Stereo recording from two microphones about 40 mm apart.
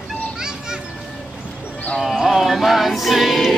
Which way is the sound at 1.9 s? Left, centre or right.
Centre.